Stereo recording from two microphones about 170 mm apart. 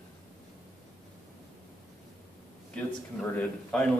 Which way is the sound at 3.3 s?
5° left (ahead or behind).